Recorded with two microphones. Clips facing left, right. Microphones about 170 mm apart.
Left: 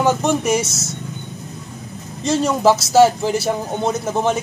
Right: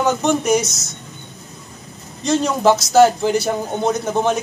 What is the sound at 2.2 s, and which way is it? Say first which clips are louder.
A man's voice: even; 5° left (ahead or behind).